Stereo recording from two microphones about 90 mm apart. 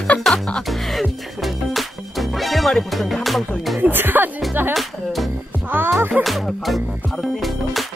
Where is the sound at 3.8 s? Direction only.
20° right (ahead or behind).